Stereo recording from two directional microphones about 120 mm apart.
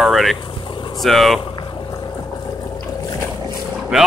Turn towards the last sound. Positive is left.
turn(degrees=-5)  # may be behind; listen again after turning